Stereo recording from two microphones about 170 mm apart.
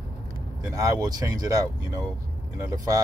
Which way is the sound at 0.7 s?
20° right (ahead or behind).